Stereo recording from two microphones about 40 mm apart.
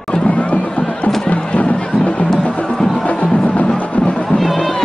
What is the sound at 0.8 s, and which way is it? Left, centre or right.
Music, centre.